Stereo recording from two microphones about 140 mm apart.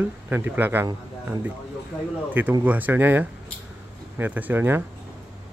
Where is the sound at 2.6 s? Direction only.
10° right (ahead or behind).